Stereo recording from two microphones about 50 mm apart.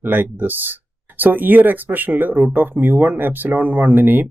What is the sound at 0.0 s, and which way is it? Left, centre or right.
Speech, right.